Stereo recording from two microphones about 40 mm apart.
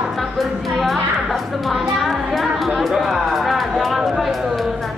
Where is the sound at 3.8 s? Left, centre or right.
Centre.